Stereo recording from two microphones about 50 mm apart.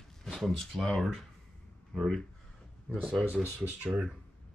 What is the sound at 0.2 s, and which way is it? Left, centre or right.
Speech, centre.